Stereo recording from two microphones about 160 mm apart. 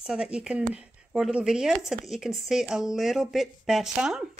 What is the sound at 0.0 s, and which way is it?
A child's voice, 5° right (ahead or behind).